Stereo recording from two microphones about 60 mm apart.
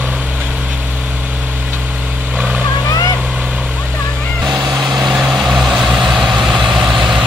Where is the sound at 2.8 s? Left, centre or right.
Left.